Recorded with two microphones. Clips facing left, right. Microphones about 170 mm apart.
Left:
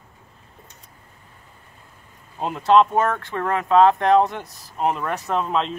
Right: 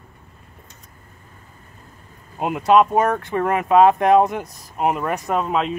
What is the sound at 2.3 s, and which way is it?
Speech, 15° right (ahead or behind).